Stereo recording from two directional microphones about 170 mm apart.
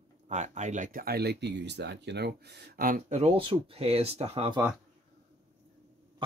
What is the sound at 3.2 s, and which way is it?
Speech, 30° right (ahead or behind).